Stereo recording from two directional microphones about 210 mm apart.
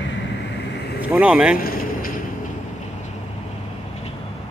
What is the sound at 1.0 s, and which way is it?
Speech, 5° right (ahead or behind).